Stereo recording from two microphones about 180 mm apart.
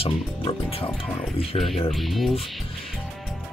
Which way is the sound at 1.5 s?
35° left (ahead or behind).